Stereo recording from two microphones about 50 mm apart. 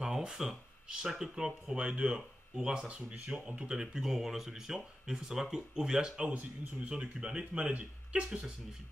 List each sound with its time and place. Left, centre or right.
0.0 s a sound: centre
0.8 s speech: centre
1.9 s speech: right